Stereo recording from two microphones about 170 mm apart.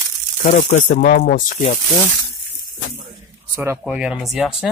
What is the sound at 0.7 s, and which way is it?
Speech, 45° left (ahead or behind).